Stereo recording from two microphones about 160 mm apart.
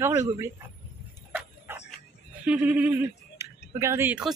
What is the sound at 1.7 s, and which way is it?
Music, 15° right (ahead or behind).